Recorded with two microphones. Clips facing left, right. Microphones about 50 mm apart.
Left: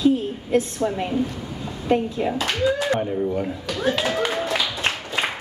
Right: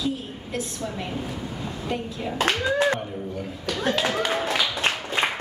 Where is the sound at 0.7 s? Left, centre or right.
Left.